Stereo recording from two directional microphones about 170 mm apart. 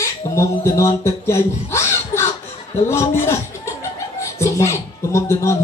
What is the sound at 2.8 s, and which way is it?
A man's voice, 15° left (ahead or behind).